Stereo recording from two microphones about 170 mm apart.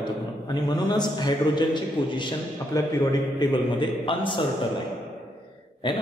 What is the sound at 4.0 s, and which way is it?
Speech, 30° left (ahead or behind).